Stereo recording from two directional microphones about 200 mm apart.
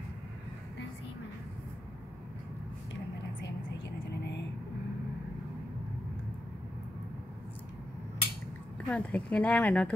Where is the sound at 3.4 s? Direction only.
60° left (ahead or behind).